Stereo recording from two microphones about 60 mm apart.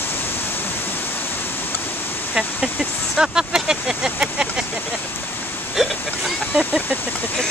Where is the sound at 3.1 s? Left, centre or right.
Centre.